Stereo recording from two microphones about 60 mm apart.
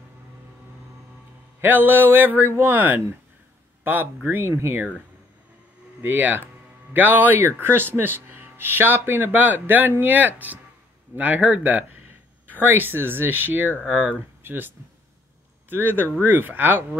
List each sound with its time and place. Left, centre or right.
1.6 s speech: right
6.0 s speech: right
15.7 s speech: right